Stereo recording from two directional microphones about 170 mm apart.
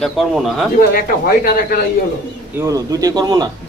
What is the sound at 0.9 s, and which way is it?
Speech, 60° left (ahead or behind).